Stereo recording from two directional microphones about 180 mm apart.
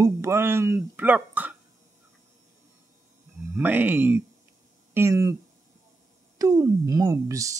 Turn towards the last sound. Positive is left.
turn(degrees=-15)  # may be behind; listen again after turning